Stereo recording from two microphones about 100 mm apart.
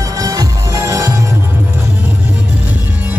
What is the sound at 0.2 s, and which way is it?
Music, 35° right (ahead or behind).